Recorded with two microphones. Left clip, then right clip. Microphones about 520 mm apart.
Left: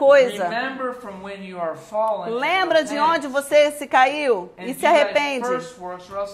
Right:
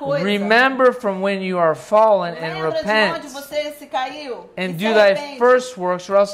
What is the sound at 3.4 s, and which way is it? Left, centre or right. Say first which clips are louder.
Speech: left 9 dB; left.